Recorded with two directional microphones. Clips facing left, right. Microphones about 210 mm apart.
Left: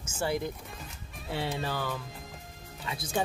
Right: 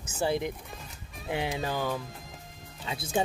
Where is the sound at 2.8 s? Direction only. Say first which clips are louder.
Right 2 dB; 25° right (ahead or behind).